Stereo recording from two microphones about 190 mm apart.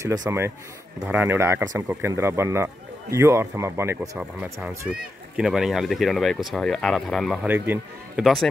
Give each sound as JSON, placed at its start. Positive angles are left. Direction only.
{"t": 0.0, "sound": "speech", "side_deg": -20}
{"t": 7.4, "sound": "speech", "side_deg": -10}
{"t": 8.2, "sound": "speech", "side_deg": 0}